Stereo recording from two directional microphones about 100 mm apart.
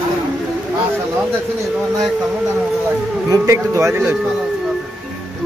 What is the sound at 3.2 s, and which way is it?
Speech, 30° right (ahead or behind).